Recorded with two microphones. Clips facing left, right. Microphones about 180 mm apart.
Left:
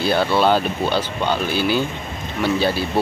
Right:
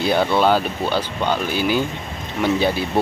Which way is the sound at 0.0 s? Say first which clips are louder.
Even; 20° right (ahead or behind).